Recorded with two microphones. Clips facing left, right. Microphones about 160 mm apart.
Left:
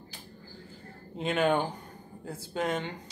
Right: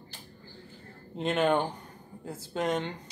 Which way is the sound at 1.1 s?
Centre (ahead or behind).